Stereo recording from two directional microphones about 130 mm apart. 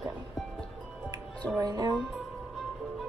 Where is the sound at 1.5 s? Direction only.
30° right (ahead or behind).